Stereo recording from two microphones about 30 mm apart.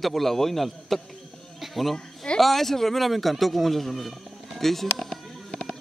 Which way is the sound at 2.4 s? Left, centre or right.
Centre.